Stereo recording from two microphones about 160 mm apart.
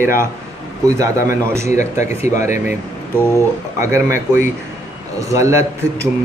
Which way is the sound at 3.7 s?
15° right (ahead or behind).